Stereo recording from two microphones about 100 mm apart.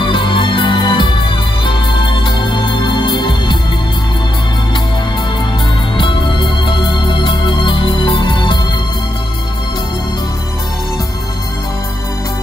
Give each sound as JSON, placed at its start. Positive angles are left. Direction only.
{"t": 0.0, "sound": "music", "side_deg": 55}
{"t": 5.9, "sound": "music", "side_deg": 55}